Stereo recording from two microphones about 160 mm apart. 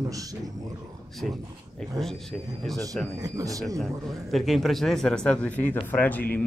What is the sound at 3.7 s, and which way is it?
A man's voice, centre (ahead or behind).